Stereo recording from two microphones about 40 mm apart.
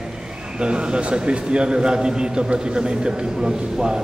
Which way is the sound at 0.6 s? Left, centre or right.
Right.